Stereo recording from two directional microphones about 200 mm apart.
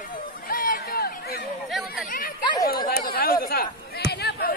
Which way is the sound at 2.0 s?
45° left (ahead or behind).